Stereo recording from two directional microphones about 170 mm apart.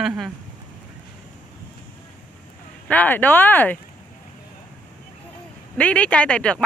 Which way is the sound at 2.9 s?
10° left (ahead or behind).